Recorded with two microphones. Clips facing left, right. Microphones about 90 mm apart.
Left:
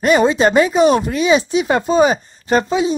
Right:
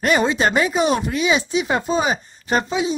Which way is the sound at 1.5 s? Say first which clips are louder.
Left 4 dB; 55° left (ahead or behind).